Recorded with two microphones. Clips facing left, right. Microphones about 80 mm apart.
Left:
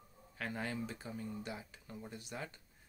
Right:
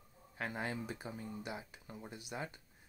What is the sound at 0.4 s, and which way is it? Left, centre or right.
Speech, right.